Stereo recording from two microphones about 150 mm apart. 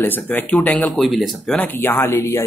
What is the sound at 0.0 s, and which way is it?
Speech, 10° left (ahead or behind).